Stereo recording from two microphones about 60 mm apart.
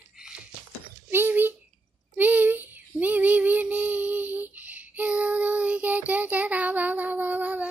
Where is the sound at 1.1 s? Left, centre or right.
Right.